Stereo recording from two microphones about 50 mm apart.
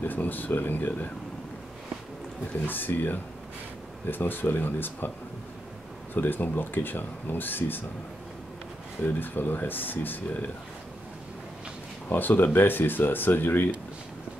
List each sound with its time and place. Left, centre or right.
0.0 s speech: left
2.6 s speech: left
6.1 s speech: left
9.0 s speech: left
12.1 s speech: left